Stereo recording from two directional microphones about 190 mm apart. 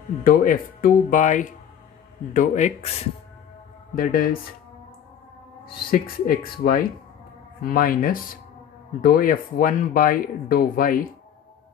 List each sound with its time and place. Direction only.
0.2 s speech: 45° left (ahead or behind)
3.9 s speech: 50° left (ahead or behind)
5.9 s speech: 50° left (ahead or behind)